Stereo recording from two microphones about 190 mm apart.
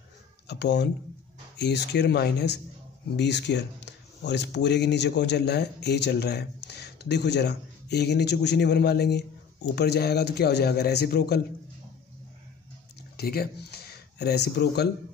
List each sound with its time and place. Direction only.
0.5 s speech: 65° left (ahead or behind)
13.2 s speech: 55° left (ahead or behind)